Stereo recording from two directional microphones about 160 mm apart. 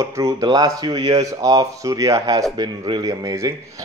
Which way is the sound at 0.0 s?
20° right (ahead or behind).